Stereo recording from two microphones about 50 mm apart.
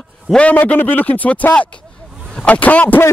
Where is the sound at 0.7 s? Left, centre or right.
Left.